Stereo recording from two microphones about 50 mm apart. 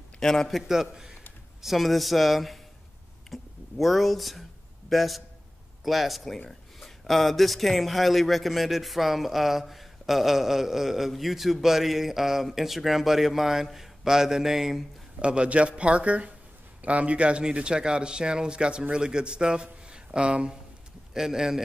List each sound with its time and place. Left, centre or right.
0.2 s a man's voice: centre
0.6 s speech: centre
3.3 s a sound: centre
5.9 s speech: centre
15.1 s a man's voice: right
21.1 s speech: centre